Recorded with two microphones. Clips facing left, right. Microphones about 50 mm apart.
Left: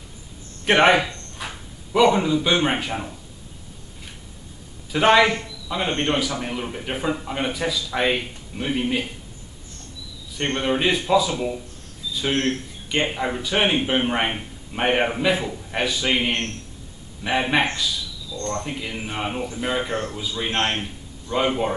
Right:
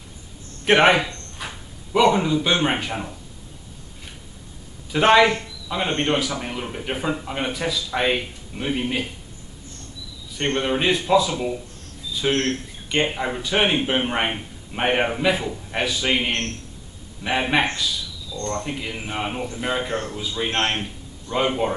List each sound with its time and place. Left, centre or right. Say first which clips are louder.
0.7 s a man's voice: even; centre
4.9 s speech: right 1 dB; centre
10.3 s speech: even; centre
12.3 s speech: right 1 dB; centre
12.9 s a man's voice: right 1 dB; centre